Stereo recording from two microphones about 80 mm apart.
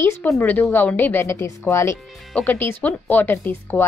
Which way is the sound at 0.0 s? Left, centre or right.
Left.